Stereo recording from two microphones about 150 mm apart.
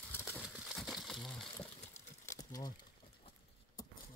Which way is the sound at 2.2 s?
25° left (ahead or behind).